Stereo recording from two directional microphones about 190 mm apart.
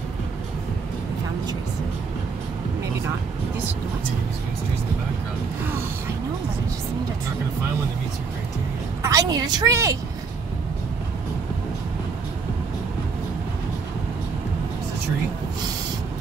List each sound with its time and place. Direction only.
9.0 s a woman's voice: 20° right (ahead or behind)